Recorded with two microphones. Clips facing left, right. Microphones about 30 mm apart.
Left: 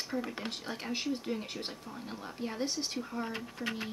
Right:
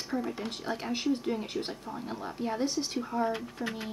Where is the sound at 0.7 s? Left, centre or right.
Centre.